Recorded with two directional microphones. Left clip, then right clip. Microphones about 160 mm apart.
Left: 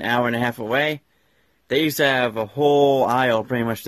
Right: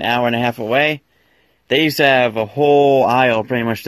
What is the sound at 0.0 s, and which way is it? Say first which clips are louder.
Speech: right 4 dB; centre (ahead or behind).